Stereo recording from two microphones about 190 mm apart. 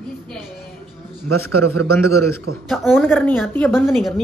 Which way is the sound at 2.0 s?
15° left (ahead or behind).